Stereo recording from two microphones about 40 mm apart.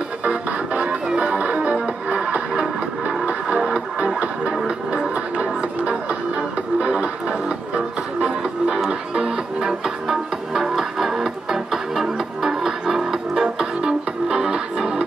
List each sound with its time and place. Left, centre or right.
0.2 s music: right
1.4 s music: right
8.7 s music: centre